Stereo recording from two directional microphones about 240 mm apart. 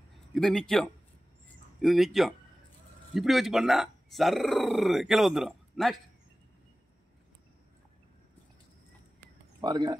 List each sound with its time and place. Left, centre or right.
0.3 s speech: centre
9.6 s speech: centre